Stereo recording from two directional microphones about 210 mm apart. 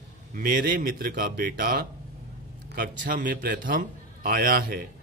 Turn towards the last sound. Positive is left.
turn(degrees=-45)  # may be behind; listen again after turning